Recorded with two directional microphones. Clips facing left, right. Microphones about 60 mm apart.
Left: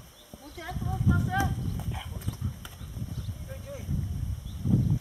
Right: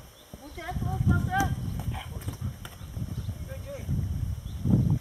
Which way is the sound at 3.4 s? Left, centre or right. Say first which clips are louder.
Right 1 dB; centre.